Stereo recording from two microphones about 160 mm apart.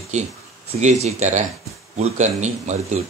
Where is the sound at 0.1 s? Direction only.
45° right (ahead or behind).